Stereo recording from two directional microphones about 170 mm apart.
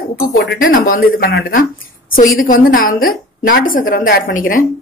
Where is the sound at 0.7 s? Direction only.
55° left (ahead or behind).